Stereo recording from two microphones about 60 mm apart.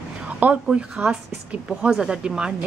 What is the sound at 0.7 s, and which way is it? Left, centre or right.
Speech, centre.